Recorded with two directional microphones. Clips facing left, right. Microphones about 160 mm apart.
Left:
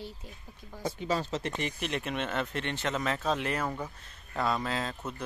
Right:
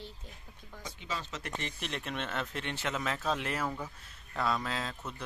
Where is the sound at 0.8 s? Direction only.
40° left (ahead or behind).